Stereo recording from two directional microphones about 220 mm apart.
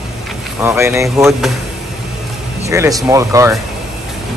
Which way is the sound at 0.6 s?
10° right (ahead or behind).